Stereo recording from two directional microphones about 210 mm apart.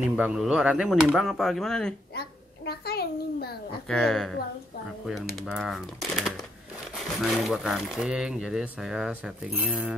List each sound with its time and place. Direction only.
0.1 s speech: 5° right (ahead or behind)
2.1 s a sound: 50° left (ahead or behind)
3.9 s speech: centre (ahead or behind)
5.3 s speech: centre (ahead or behind)